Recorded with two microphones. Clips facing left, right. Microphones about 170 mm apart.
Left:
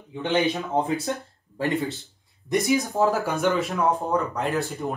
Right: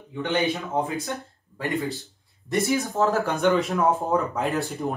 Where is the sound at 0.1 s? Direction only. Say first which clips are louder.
Left 1 dB; 20° left (ahead or behind).